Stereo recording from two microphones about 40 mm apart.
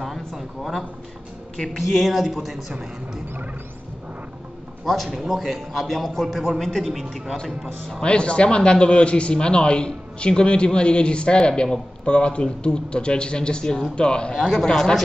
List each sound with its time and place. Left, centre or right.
0.0 s a man's voice: centre
4.8 s a man's voice: centre
8.0 s a man's voice: left